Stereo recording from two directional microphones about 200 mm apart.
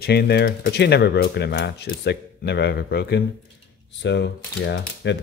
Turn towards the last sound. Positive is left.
turn(degrees=60)  # may be behind; listen again after turning